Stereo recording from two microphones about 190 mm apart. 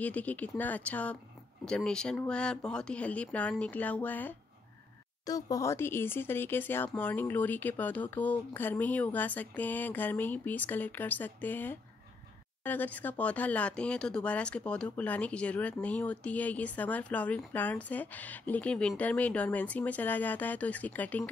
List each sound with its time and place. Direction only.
0.0 s speech: 10° left (ahead or behind)